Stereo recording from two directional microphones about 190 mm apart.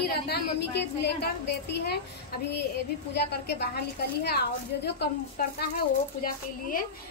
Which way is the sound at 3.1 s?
60° left (ahead or behind).